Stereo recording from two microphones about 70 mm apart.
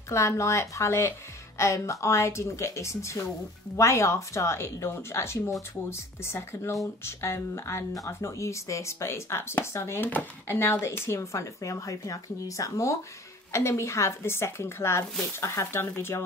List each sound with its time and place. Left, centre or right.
0.1 s speech: left